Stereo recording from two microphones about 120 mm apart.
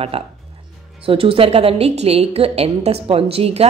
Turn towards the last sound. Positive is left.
turn(degrees=-55)  # may be behind; listen again after turning